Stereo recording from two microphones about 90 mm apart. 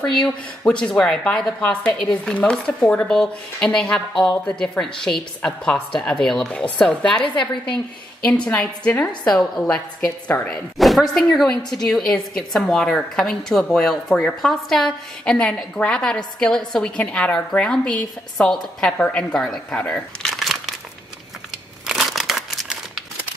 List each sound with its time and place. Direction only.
0.0 s a woman's voice: 10° left (ahead or behind)
8.3 s a woman's voice: 15° left (ahead or behind)
10.8 s a woman's voice: centre (ahead or behind)
21.8 s crumpling: centre (ahead or behind)